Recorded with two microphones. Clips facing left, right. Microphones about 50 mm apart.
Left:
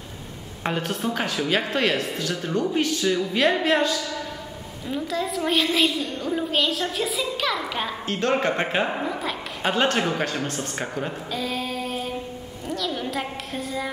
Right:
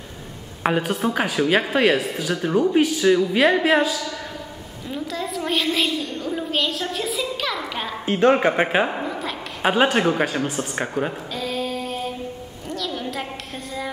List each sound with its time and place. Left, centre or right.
0.7 s a woman's voice: centre
8.0 s speech: centre
8.9 s a sound: centre
9.7 s speech: centre
11.3 s female singing: centre
12.6 s a sound: centre